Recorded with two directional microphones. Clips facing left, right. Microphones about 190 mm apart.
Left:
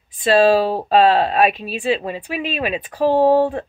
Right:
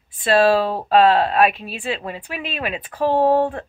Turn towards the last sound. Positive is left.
turn(degrees=15)  # may be behind; listen again after turning